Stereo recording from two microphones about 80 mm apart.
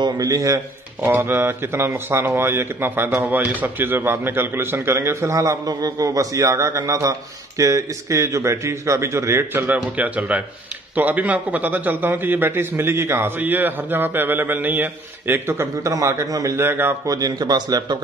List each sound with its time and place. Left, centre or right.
0.0 s a man's voice: right
1.1 s a man's voice: right
9.9 s a man's voice: centre; by 16.5 s right
16.5 s a man's voice: right
17.0 s speech: right